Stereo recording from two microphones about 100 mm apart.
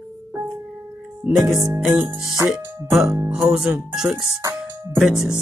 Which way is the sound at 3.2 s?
Centre (ahead or behind).